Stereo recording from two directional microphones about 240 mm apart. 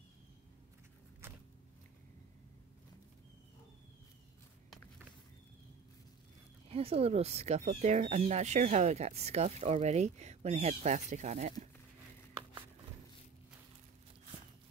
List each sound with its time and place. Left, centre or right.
6.7 s speech: right